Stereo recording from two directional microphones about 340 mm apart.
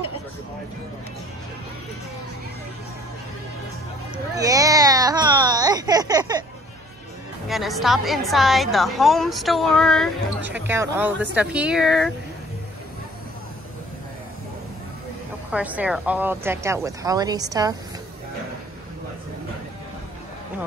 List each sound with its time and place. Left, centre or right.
4.4 s baby cry: centre
7.4 s a woman's voice: centre
15.5 s speech: centre